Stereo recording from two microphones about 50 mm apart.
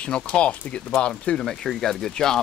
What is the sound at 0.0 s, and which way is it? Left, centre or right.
Speech, left.